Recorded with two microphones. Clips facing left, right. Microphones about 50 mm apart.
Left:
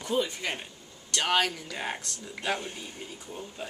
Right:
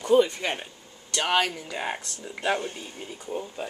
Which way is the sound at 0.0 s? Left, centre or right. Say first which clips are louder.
Right 9 dB; right.